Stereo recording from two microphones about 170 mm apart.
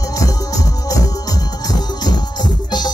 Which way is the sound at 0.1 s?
20° left (ahead or behind).